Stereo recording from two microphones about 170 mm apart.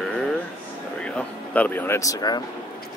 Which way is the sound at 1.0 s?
10° left (ahead or behind).